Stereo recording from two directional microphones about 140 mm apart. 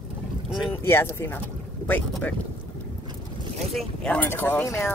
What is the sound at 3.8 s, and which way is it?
Speech, 10° left (ahead or behind).